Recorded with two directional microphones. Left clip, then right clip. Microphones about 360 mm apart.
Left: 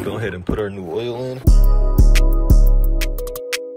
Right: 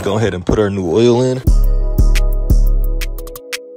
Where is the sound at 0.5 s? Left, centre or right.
Right.